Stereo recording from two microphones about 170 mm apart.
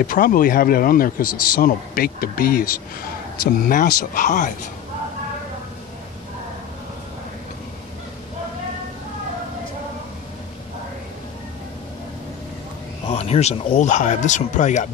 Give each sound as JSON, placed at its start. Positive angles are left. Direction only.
{"t": 0.0, "sound": "a man's voice", "side_deg": 55}
{"t": 13.0, "sound": "speech", "side_deg": 35}